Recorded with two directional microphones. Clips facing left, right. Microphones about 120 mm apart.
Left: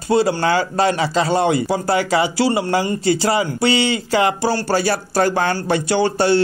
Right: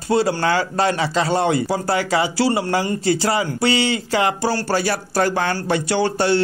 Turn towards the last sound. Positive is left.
turn(degrees=30)  # may be behind; listen again after turning